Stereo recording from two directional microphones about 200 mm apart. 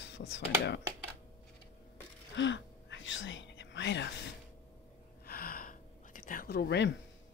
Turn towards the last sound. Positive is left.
turn(degrees=60)  # may be behind; listen again after turning